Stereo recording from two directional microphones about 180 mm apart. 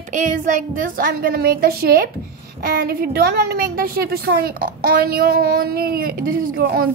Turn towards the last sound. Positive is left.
turn(degrees=-55)  # may be behind; listen again after turning